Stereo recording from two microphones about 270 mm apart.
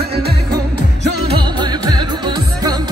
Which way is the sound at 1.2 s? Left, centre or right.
Centre.